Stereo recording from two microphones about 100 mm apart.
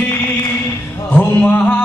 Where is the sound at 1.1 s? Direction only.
20° left (ahead or behind).